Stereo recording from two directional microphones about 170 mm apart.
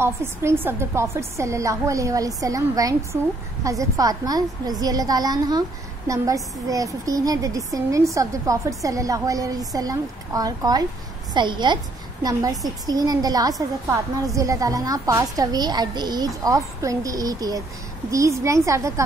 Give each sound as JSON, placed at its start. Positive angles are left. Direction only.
{"t": 0.0, "sound": "a woman's voice", "side_deg": -15}